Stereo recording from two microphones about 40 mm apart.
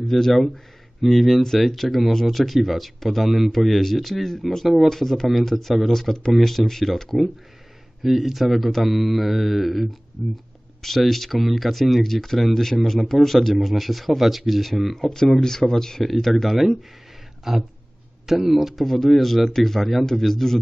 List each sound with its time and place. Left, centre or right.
0.0 s speech: centre
8.0 s speech: centre
15.0 s speech: centre
17.5 s speech: centre